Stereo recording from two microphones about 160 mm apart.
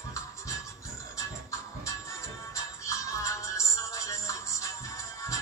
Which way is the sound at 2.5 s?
20° left (ahead or behind).